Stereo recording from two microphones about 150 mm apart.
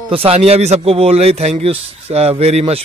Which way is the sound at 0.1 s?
40° right (ahead or behind).